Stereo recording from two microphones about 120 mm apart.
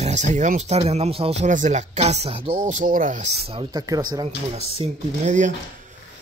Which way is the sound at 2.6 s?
90° right.